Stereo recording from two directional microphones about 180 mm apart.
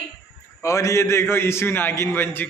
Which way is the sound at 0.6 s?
15° left (ahead or behind).